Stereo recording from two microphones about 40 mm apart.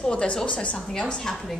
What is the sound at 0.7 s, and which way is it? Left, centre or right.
Speech, centre.